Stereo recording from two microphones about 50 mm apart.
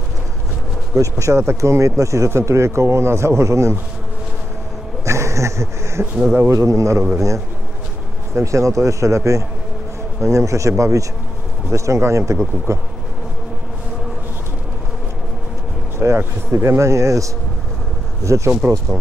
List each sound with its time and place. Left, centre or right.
0.9 s speech: right
5.0 s insect: right
6.3 s speech: right
7.2 s speech: right
16.0 s speech: right
16.5 s speech: right